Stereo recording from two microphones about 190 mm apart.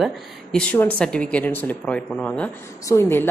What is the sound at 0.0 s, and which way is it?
Speech, 5° left (ahead or behind).